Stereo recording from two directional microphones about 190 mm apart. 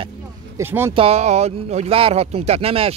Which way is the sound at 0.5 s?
10° right (ahead or behind).